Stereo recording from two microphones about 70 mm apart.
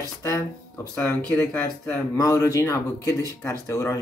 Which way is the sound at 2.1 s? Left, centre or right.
Left.